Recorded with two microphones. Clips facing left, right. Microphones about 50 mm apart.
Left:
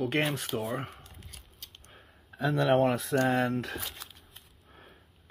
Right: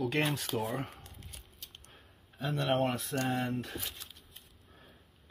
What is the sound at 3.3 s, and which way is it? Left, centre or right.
Speech, left.